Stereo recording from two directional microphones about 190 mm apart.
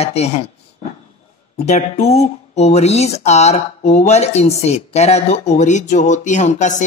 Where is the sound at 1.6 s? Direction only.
35° left (ahead or behind).